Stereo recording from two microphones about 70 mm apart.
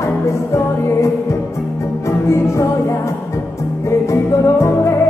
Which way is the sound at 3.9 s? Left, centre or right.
Left.